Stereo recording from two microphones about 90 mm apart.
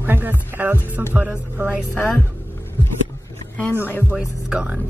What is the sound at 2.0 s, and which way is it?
Speech, 20° left (ahead or behind).